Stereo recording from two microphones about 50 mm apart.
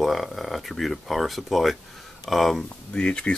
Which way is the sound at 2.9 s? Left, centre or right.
Centre.